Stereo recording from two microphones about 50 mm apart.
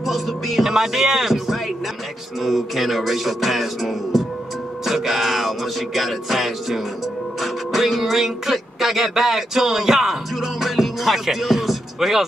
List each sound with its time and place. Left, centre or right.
0.0 s speech: centre